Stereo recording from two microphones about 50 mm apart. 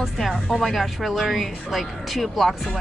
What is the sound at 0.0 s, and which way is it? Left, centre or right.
Speech, centre.